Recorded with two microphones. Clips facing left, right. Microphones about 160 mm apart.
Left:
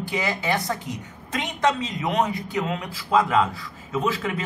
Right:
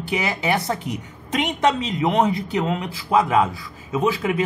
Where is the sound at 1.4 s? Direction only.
25° right (ahead or behind).